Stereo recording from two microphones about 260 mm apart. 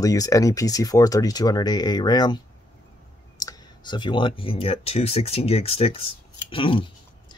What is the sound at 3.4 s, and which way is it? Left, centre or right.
Speech, centre.